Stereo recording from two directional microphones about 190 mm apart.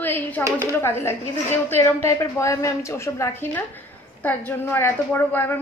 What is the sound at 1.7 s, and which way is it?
A woman's voice, 10° left (ahead or behind).